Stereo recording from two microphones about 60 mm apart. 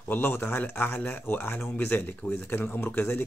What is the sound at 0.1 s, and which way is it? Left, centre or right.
Speech, left.